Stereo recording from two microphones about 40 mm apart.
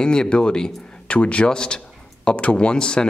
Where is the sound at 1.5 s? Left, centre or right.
Centre.